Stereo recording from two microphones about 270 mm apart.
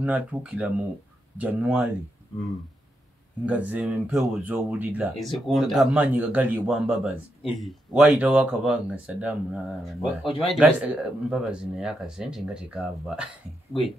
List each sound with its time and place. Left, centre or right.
0.0 s speech: centre
3.4 s speech: centre
10.2 s speech: left
10.5 s speech: centre